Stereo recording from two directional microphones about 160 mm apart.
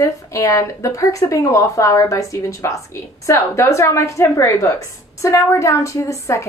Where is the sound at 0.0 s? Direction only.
20° left (ahead or behind).